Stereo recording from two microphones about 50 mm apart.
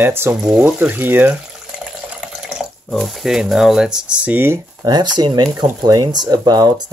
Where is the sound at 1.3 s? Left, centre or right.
Right.